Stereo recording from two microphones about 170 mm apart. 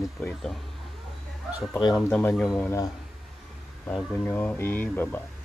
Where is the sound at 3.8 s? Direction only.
10° left (ahead or behind).